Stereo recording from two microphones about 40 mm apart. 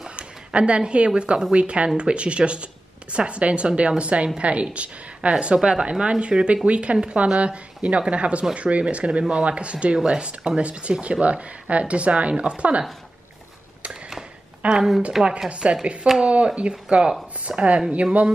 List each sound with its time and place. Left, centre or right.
0.1 s a woman's voice: right
14.6 s a woman's voice: right
15.2 s a woman's voice: right